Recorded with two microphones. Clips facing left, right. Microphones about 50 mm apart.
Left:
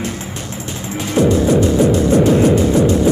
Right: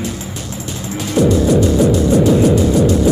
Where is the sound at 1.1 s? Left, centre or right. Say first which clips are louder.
Even; left.